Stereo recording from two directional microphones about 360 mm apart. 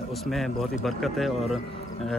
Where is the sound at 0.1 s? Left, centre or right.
Centre.